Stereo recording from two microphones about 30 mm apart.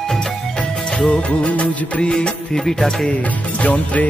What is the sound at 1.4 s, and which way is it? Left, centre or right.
Music, left.